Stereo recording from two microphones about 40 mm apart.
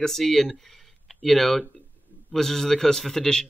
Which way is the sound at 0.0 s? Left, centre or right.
Centre.